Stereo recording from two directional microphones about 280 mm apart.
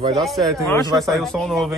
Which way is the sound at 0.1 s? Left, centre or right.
Centre.